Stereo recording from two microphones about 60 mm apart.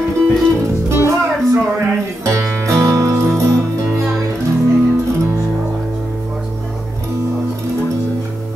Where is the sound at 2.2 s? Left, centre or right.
Right.